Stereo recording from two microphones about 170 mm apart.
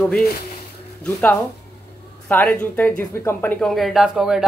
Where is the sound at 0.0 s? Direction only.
Centre (ahead or behind).